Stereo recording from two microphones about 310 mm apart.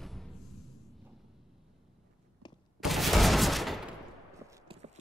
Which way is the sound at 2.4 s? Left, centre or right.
Centre.